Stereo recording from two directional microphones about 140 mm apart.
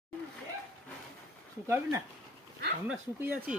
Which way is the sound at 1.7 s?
15° right (ahead or behind).